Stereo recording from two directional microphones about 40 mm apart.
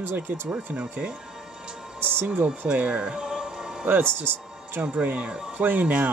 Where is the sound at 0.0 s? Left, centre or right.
Right.